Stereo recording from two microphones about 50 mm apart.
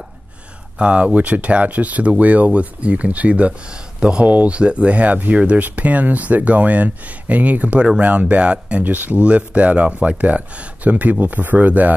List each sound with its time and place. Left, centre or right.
0.7 s speech: right